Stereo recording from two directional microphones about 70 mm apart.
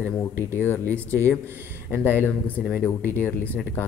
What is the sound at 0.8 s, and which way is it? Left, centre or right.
Speech, right.